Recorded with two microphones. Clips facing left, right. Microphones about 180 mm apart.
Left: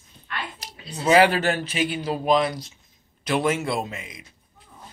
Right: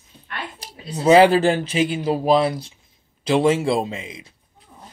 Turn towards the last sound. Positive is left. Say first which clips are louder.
# right 5 dB
turn(degrees=-25)  # may be behind; listen again after turning